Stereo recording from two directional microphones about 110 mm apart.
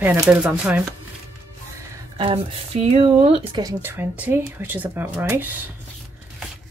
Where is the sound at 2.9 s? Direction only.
65° right (ahead or behind).